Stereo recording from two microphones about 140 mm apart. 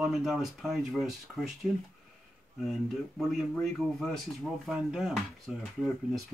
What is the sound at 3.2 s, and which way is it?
Speech, centre (ahead or behind).